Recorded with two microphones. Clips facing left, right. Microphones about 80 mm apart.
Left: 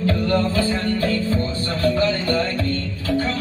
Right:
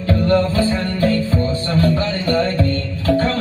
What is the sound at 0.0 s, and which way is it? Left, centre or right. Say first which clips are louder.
Music: right 4 dB; right.